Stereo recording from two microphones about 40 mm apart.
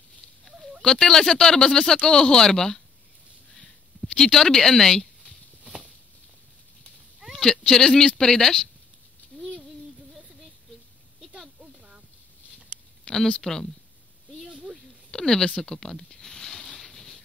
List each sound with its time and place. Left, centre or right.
0.5 s chicken: centre
0.8 s speech: centre
4.2 s speech: centre
7.2 s cat: centre
7.7 s speech: centre
9.3 s a sound: centre
13.0 s a sound: centre
13.4 s speech: centre
15.0 s speech: centre
15.5 s a sound: centre